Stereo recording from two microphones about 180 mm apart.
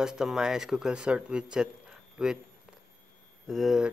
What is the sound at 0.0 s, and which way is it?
A man's voice, 5° right (ahead or behind).